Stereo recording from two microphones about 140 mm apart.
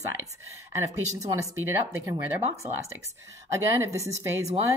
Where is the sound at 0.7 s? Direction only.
20° right (ahead or behind).